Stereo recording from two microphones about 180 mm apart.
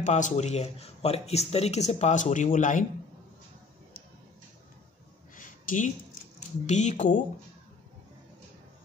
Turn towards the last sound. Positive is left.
turn(degrees=45)  # may be behind; listen again after turning